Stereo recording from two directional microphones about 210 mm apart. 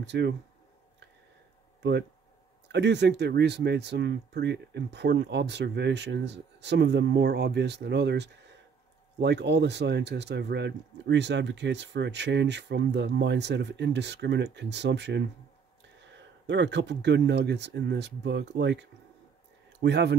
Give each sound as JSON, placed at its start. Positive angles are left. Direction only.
{"t": 0.0, "sound": "speech", "side_deg": -55}
{"t": 1.8, "sound": "speech", "side_deg": -55}
{"t": 16.4, "sound": "speech", "side_deg": -55}